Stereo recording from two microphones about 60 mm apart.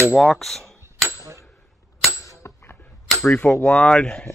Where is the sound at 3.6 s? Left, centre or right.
Left.